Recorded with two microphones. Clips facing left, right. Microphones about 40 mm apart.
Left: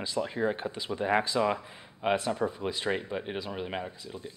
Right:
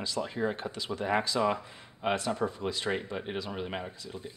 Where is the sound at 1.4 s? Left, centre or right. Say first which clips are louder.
Left 1 dB; centre.